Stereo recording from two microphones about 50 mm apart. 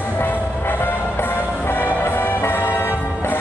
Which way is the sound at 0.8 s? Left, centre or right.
Left.